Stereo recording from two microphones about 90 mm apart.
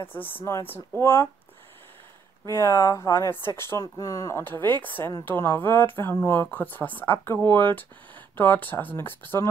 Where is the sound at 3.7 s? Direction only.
35° left (ahead or behind).